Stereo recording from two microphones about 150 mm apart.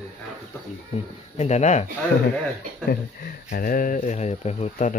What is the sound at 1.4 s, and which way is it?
Speech, 50° left (ahead or behind).